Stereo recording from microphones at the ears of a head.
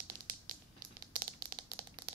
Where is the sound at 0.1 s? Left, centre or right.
Right.